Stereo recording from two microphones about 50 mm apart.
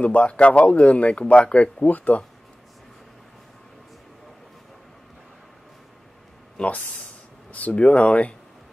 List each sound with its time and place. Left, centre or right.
0.0 s speech: left
6.5 s speech: left